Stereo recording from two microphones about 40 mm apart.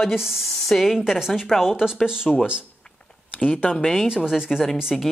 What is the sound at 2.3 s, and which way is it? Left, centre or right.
Speech, centre.